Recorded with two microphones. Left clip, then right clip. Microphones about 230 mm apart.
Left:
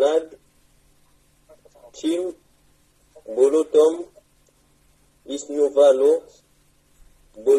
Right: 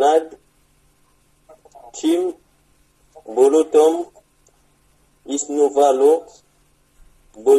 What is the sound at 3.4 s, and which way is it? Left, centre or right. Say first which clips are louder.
Speech: right 3 dB; right.